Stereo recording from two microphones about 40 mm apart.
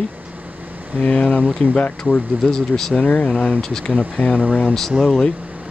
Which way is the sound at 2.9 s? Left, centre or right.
Left.